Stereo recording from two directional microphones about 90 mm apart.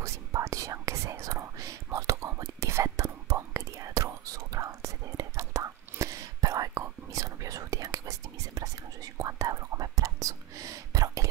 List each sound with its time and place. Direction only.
0.0 s whispering: 35° right (ahead or behind)